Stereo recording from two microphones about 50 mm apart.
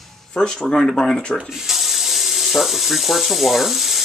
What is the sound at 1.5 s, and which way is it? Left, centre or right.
Sink, centre.